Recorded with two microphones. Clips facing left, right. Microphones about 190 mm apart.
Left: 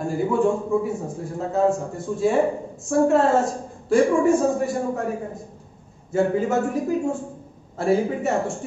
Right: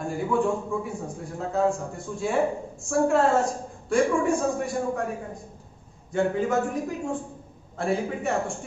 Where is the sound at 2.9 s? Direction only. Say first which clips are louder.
Left 4 dB; centre (ahead or behind).